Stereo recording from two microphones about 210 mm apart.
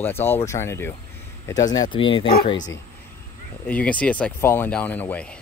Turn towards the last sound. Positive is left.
turn(degrees=5)  # may be behind; listen again after turning